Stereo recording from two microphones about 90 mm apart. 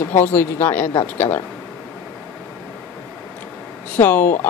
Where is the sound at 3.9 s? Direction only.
20° left (ahead or behind).